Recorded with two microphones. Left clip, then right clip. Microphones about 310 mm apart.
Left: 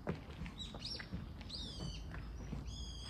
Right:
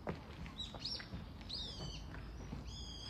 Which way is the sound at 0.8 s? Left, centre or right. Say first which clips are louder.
Right 1 dB; centre.